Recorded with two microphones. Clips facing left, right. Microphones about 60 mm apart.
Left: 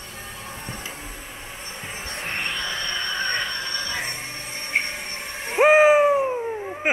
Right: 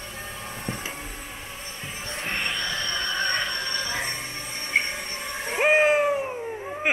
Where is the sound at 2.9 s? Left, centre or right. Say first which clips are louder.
Even; left.